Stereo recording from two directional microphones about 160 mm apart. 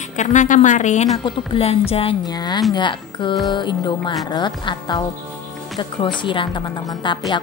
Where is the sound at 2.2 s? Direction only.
25° left (ahead or behind).